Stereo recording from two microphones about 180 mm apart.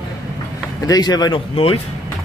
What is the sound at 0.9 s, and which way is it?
Speech, 20° left (ahead or behind).